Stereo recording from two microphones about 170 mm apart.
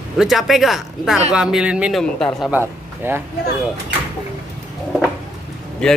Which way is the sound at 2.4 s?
10° right (ahead or behind).